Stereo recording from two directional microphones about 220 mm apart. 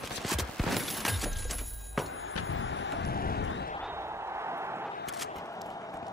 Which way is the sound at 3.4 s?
55° left (ahead or behind).